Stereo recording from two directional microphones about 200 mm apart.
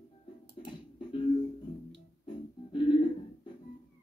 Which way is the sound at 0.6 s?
25° left (ahead or behind).